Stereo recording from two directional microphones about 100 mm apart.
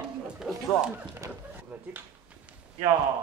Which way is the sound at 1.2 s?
35° right (ahead or behind).